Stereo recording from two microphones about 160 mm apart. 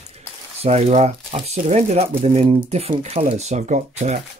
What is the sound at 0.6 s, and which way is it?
Speech, 40° right (ahead or behind).